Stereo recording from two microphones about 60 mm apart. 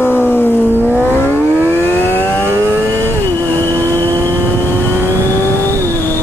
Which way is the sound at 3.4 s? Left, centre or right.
Left.